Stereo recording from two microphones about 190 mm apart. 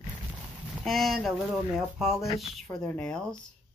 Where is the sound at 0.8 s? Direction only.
Centre (ahead or behind).